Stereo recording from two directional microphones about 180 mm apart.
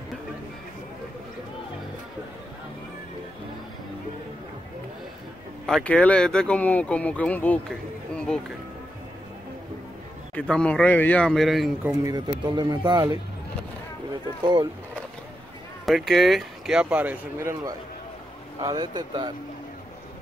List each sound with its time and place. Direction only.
5.7 s speech: 5° left (ahead or behind)
8.1 s music: 5° left (ahead or behind)
10.5 s speech: 5° left (ahead or behind)
11.9 s speech: 15° right (ahead or behind)
14.4 s speech: 25° right (ahead or behind)
15.8 s speech: centre (ahead or behind); by 19.3 s 25° right (ahead or behind)